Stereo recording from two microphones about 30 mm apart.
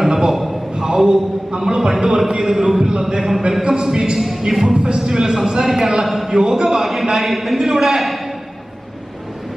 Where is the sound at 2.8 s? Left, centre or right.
Right.